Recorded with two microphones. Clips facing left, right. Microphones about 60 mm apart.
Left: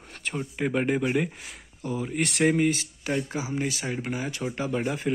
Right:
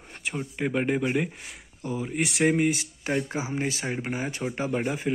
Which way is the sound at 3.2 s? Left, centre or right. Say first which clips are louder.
Even; right.